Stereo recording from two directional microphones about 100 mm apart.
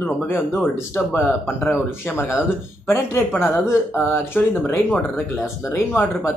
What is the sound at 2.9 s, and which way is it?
Speech, 25° left (ahead or behind).